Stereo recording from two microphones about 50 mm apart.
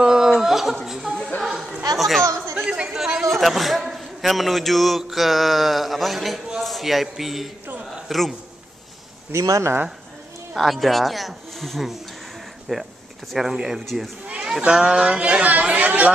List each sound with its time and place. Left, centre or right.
0.0 s a sound: centre
0.8 s chuckle: centre
1.4 s chatter: centre
2.0 s speech: centre
2.5 s a man's voice: centre
9.3 s speech: right
10.5 s a man's voice: centre
14.6 s speech: centre